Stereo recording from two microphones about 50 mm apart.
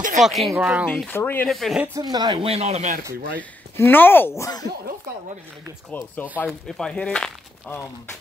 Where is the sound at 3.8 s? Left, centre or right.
Left.